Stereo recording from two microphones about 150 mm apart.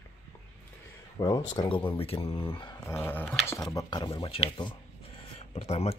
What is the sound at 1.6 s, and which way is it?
Speech, 35° left (ahead or behind).